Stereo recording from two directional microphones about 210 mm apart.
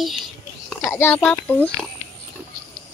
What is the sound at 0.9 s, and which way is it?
Speech, 10° left (ahead or behind).